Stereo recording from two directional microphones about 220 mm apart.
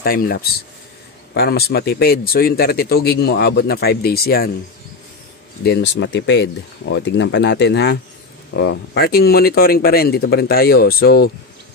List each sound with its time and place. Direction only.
0.0 s speech: 45° left (ahead or behind)
5.6 s speech: 50° left (ahead or behind)